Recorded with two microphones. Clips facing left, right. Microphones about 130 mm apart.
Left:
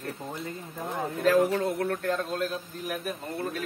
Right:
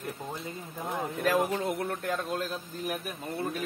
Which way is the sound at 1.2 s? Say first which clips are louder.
Left 5 dB; 15° right (ahead or behind).